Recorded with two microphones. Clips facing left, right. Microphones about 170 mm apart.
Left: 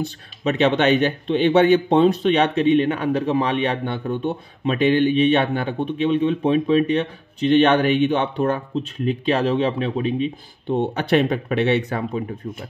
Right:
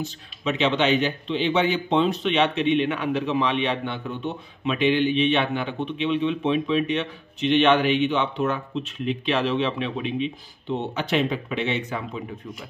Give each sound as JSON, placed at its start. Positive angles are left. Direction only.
{"t": 0.4, "sound": "speech", "side_deg": 55}